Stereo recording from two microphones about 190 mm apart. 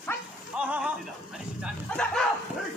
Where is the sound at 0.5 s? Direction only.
5° right (ahead or behind).